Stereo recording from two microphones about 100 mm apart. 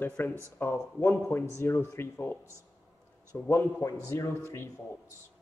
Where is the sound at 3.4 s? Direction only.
30° left (ahead or behind).